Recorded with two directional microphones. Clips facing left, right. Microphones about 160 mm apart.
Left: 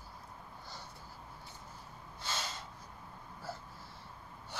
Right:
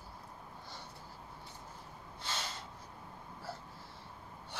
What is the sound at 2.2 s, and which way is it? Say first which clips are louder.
Snort: left 1 dB; 30° right (ahead or behind).